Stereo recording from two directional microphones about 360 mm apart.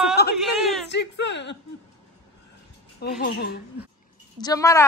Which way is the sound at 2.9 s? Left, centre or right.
Left.